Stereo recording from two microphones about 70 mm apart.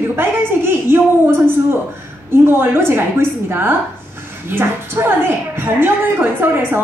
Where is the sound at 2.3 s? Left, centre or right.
Right.